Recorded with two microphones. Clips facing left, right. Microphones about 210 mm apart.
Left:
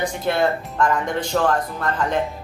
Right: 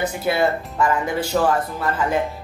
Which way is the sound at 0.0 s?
5° right (ahead or behind).